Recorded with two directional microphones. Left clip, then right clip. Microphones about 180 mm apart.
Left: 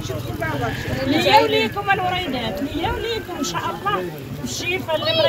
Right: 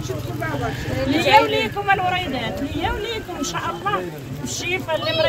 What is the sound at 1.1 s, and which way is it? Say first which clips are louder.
Speech: even; 25° right (ahead or behind).